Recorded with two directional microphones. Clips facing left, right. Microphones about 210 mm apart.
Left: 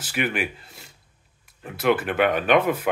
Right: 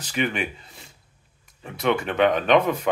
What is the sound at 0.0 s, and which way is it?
Speech, 5° left (ahead or behind).